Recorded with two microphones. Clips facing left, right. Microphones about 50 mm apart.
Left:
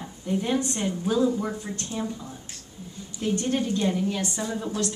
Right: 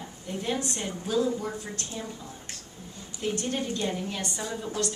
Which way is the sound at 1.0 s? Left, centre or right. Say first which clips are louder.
Left 3 dB; centre.